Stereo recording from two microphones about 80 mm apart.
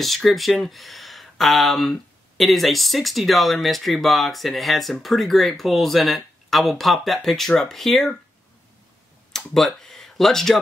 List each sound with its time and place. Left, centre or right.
0.0 s speech: centre
9.3 s speech: centre